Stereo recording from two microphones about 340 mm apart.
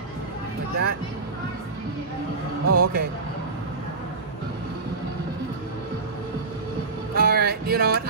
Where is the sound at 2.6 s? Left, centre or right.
Right.